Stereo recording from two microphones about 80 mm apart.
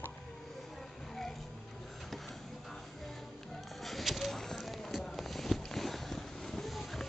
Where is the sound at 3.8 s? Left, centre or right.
Centre.